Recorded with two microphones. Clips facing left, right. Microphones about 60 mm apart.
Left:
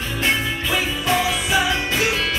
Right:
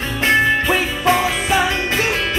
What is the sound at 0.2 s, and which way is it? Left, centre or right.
Music, right.